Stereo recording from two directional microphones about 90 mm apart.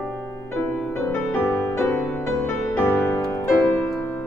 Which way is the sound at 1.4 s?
20° left (ahead or behind).